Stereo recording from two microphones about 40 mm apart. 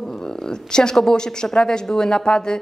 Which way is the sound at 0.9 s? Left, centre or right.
Centre.